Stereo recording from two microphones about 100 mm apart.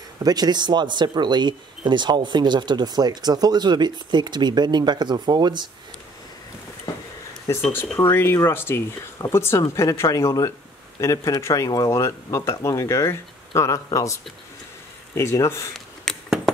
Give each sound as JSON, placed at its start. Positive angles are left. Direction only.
{"t": 0.2, "sound": "speech", "side_deg": -40}
{"t": 7.5, "sound": "speech", "side_deg": 30}
{"t": 16.1, "sound": "a sound", "side_deg": 5}